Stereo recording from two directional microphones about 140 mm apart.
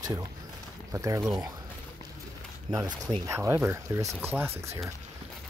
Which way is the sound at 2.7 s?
25° right (ahead or behind).